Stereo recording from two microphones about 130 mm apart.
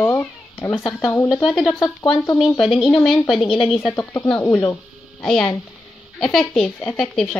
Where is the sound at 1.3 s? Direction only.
Centre (ahead or behind).